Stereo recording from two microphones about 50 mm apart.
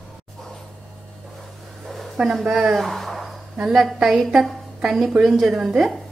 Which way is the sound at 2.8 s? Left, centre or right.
Centre.